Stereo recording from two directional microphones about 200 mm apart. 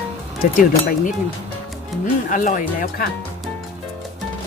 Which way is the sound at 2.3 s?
40° left (ahead or behind).